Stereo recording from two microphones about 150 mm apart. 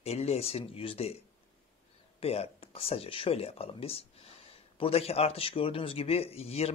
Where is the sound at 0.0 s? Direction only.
45° left (ahead or behind).